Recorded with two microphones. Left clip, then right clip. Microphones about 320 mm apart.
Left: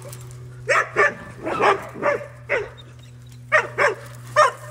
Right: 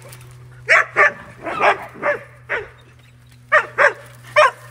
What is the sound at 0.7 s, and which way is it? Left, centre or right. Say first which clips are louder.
Dog: right 5 dB; centre.